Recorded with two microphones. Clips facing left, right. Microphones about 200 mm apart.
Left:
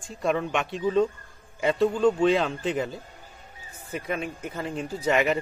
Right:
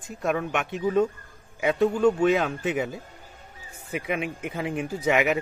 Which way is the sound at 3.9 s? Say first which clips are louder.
Right 2 dB; 15° right (ahead or behind).